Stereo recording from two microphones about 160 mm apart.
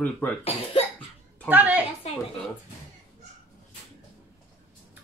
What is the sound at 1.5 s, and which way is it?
Speech, 10° right (ahead or behind).